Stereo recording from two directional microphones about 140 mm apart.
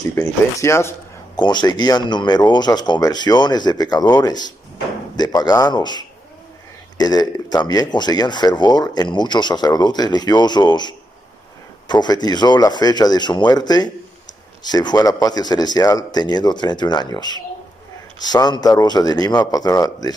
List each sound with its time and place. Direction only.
0.1 s speech: 20° left (ahead or behind)
1.3 s a man's voice: 30° left (ahead or behind)